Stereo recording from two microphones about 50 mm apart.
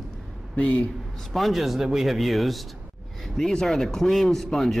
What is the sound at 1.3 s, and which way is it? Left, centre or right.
Speech, centre.